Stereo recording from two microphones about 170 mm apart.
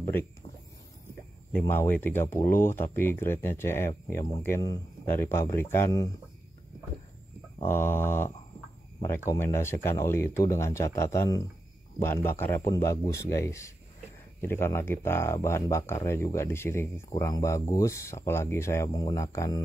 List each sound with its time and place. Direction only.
0.0 s speech: 15° left (ahead or behind)
1.5 s speech: 10° left (ahead or behind)
7.6 s speech: 15° left (ahead or behind)